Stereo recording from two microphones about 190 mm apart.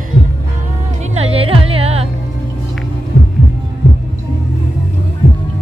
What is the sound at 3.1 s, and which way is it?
Heart sounds, 70° left (ahead or behind).